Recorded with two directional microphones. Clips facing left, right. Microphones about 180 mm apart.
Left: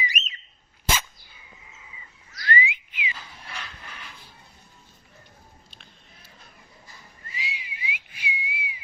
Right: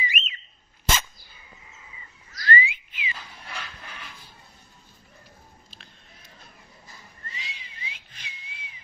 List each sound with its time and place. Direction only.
0.1 s dog: 40° left (ahead or behind)
0.8 s dog: 10° left (ahead or behind)
2.5 s whistling: 15° left (ahead or behind)
5.7 s a sound: centre (ahead or behind)
7.2 s whistling: 10° left (ahead or behind)